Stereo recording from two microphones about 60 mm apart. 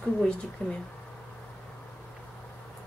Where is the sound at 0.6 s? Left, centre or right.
Left.